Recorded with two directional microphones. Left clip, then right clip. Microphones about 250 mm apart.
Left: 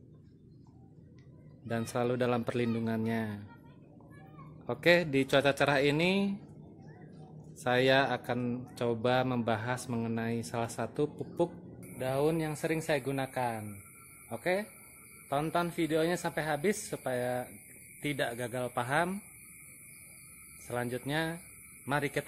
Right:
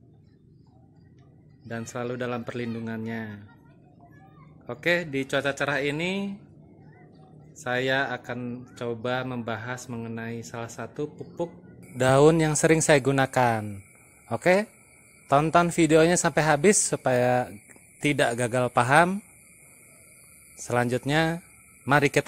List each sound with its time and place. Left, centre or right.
1.7 s speech: centre
4.6 s speech: centre
7.5 s speech: centre
12.0 s a man's voice: right
20.6 s a man's voice: right